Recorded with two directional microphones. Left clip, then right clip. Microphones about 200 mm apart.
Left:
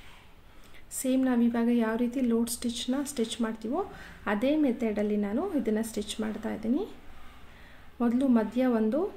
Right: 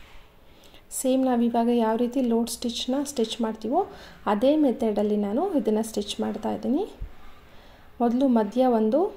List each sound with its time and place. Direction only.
0.9 s a woman's voice: 15° right (ahead or behind)
8.0 s a woman's voice: 15° right (ahead or behind)